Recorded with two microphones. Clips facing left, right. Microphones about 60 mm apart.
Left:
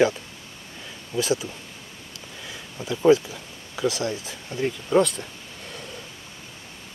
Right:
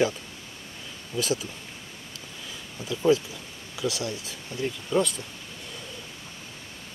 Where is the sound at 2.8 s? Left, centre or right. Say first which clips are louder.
Left 5 dB; left.